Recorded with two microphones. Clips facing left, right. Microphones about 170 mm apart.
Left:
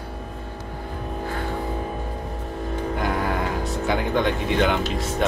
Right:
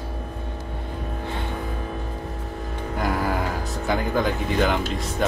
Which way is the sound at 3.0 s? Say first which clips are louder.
Right 2 dB; centre (ahead or behind).